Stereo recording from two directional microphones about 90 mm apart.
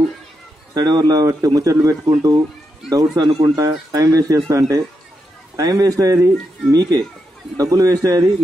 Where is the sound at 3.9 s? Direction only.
40° right (ahead or behind).